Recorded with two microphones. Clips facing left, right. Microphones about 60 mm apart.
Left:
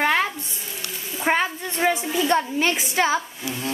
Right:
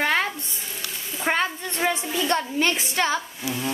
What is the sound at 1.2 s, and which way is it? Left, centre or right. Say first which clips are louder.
A woman's voice: left 2 dB; centre.